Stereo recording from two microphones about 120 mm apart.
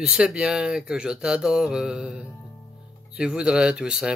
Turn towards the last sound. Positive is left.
turn(degrees=-5)  # may be behind; listen again after turning